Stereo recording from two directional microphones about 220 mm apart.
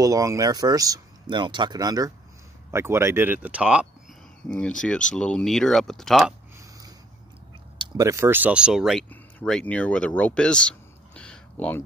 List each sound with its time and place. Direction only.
0.0 s speech: 15° right (ahead or behind)
7.8 s speech: 15° right (ahead or behind); by 11.8 s 5° left (ahead or behind)